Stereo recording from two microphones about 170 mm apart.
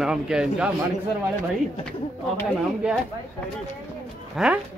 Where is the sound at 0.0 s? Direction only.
5° right (ahead or behind).